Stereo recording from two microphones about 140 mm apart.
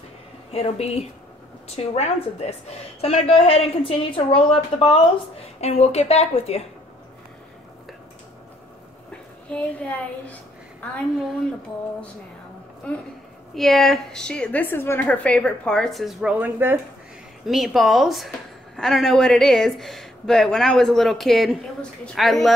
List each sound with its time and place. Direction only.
0.5 s a woman's voice: 50° left (ahead or behind)
9.1 s speech: 10° left (ahead or behind)
13.6 s a woman's voice: centre (ahead or behind); by 16.8 s 15° right (ahead or behind)
17.5 s a woman's voice: centre (ahead or behind)